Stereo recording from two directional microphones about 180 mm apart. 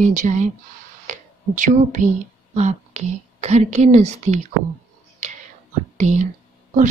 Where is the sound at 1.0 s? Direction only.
45° right (ahead or behind).